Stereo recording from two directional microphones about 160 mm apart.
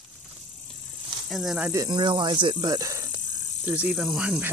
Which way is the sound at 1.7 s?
25° right (ahead or behind).